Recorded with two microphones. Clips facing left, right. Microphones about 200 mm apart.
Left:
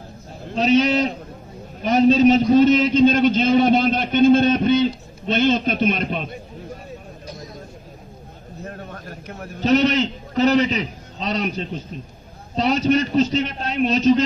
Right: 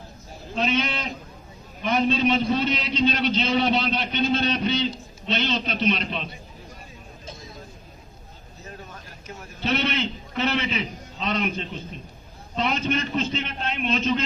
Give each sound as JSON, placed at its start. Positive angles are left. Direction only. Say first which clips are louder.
{"t": 0.6, "sound": "a man's voice", "louder": "left 9 dB", "side_deg": 40}
{"t": 8.6, "sound": "a sound", "louder": "left 7 dB", "side_deg": 60}
{"t": 9.6, "sound": "a man's voice", "louder": "left 8 dB", "side_deg": 40}